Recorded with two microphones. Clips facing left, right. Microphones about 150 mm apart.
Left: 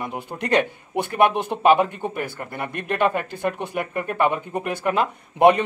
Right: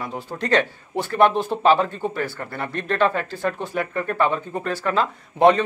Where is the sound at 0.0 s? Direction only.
15° left (ahead or behind).